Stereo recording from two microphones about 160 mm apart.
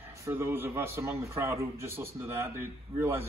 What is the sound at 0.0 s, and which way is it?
A man's voice, 15° right (ahead or behind).